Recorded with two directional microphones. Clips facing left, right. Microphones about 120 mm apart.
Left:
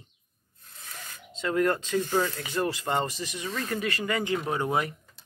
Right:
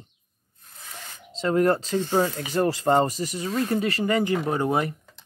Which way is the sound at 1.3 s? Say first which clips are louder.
Right 5 dB; 35° right (ahead or behind).